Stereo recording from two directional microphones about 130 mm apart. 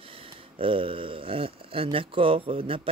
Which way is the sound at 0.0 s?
45° right (ahead or behind).